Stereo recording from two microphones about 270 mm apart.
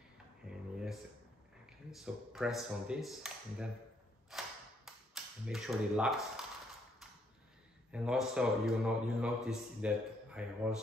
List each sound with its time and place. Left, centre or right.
1.9 s a man's voice: centre
4.3 s a sound: centre
7.9 s a man's voice: centre